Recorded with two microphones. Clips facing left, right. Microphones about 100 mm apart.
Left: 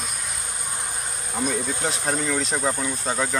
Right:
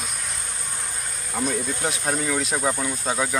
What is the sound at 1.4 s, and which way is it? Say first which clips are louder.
Speech: even; 5° left (ahead or behind).